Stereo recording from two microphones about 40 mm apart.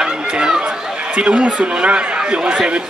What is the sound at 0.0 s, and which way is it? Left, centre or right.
Chatter, right.